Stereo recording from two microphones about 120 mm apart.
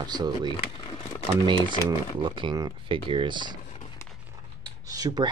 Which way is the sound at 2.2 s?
40° right (ahead or behind).